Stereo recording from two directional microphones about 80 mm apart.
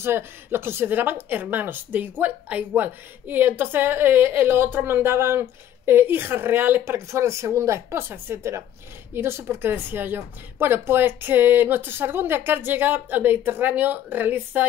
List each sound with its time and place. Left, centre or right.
0.0 s a woman's voice: right